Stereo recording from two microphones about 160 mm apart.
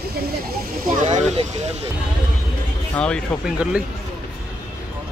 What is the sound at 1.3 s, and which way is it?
Speech, 40° right (ahead or behind).